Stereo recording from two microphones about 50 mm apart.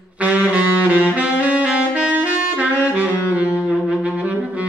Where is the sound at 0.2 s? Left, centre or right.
Right.